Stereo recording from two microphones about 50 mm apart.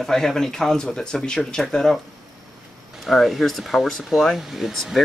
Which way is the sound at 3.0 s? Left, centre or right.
Centre.